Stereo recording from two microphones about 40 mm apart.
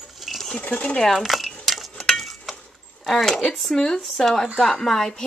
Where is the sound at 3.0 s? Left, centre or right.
Centre.